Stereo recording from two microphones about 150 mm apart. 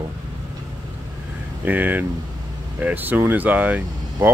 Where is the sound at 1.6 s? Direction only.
10° right (ahead or behind).